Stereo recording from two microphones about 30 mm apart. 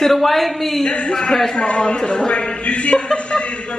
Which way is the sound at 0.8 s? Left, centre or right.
Left.